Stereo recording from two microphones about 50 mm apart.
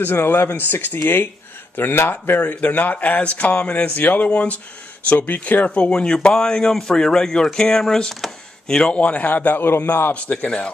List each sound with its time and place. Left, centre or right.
0.0 s speech: left
2.3 s speech: left
4.3 s speech: left
5.9 s speech: centre
8.9 s speech: left